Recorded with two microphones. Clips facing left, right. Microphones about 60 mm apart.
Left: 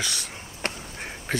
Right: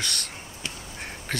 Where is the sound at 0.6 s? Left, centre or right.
Left.